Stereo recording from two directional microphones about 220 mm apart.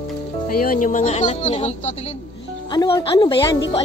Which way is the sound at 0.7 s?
35° left (ahead or behind).